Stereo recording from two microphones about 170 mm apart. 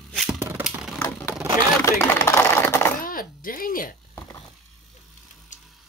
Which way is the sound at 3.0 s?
55° left (ahead or behind).